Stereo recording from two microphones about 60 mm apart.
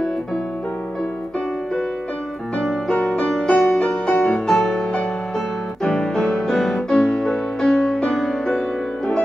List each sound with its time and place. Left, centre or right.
2.9 s music: centre
5.9 s music: centre